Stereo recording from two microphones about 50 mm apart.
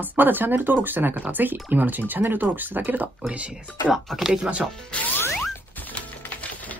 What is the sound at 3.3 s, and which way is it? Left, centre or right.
Speech, right.